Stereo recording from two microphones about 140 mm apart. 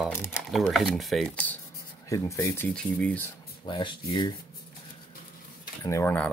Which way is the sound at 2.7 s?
5° left (ahead or behind).